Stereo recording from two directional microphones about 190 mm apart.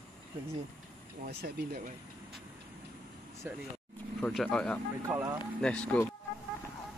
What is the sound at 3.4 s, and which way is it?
Speech, 10° right (ahead or behind).